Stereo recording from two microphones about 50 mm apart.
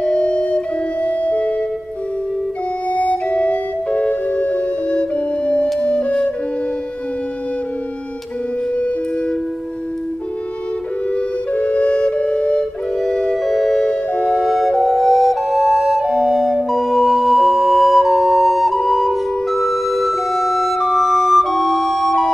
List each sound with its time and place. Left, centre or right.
0.0 s music: left
2.9 s music: left
11.1 s flute: left
13.4 s music: centre